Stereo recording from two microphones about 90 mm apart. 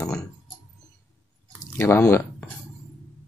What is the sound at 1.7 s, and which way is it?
Speech, 30° left (ahead or behind).